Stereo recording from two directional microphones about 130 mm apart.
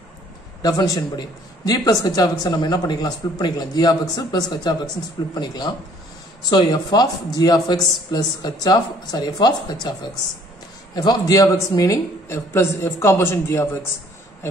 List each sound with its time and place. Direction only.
0.6 s speech: 30° left (ahead or behind)
11.0 s speech: 30° left (ahead or behind)